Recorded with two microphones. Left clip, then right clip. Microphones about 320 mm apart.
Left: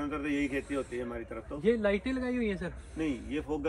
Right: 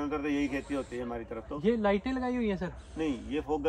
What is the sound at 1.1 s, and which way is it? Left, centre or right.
Speech, right.